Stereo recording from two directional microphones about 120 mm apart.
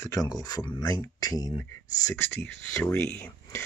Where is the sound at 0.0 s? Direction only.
30° left (ahead or behind).